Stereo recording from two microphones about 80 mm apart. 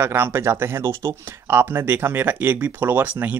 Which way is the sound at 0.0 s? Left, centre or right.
Right.